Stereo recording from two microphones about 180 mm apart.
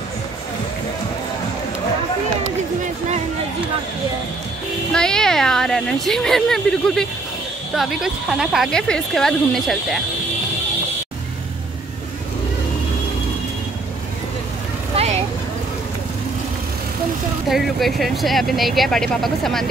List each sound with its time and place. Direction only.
4.9 s a woman's voice: 5° left (ahead or behind)
15.0 s vehicle: 35° right (ahead or behind)
17.5 s a woman's voice: centre (ahead or behind)